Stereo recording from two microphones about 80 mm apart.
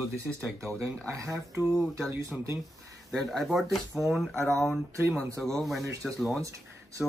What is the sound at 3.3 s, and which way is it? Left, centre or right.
Speech, centre.